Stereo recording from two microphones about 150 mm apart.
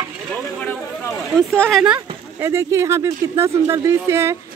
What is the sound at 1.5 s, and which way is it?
Speech, 5° left (ahead or behind).